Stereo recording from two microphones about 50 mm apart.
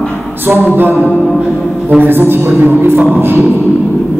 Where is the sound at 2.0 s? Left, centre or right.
Right.